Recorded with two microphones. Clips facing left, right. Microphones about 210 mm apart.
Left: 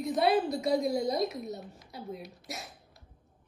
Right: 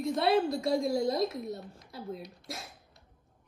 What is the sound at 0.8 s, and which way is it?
Speech, 20° left (ahead or behind).